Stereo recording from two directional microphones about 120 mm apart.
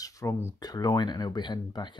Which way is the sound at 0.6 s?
35° left (ahead or behind).